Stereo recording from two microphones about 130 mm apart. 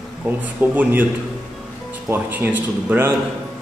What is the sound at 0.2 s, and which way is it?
Speech, 10° right (ahead or behind).